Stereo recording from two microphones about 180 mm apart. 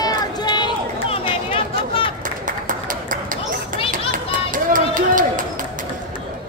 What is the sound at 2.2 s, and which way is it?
Run, 45° right (ahead or behind).